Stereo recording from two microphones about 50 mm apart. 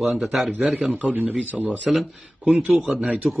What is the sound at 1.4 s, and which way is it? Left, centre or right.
Speech, right.